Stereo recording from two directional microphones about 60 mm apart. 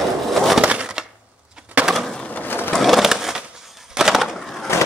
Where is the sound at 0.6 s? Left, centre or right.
Centre.